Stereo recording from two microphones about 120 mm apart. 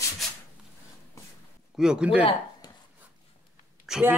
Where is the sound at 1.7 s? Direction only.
5° right (ahead or behind).